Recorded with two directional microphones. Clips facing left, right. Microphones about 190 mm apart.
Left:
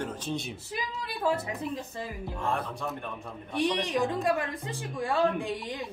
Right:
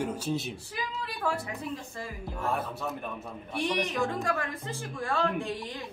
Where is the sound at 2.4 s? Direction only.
5° right (ahead or behind).